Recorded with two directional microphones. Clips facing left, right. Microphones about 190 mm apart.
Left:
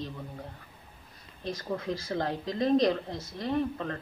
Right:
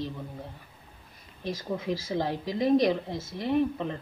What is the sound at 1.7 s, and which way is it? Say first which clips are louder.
A woman's voice: right 2 dB; 15° right (ahead or behind).